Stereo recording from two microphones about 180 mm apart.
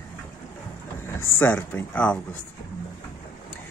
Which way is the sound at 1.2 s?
10° left (ahead or behind).